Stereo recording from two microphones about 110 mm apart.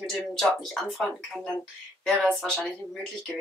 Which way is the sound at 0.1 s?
5° left (ahead or behind).